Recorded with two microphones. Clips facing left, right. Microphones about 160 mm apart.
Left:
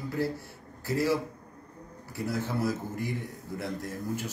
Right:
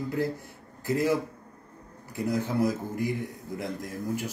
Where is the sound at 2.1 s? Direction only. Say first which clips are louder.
Right 4 dB; 15° right (ahead or behind).